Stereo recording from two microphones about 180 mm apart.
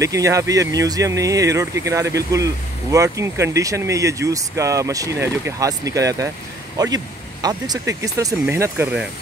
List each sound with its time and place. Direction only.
0.0 s speech: 15° right (ahead or behind)